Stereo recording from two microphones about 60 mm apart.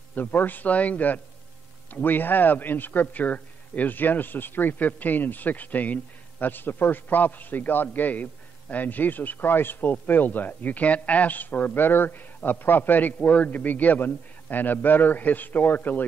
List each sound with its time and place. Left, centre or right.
0.1 s a man's voice: left